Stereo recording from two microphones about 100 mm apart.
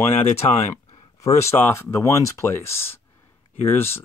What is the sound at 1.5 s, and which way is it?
Speech, 25° left (ahead or behind).